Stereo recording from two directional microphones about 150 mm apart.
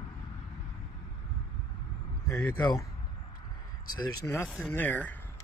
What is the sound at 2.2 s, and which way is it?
Speech, 20° left (ahead or behind).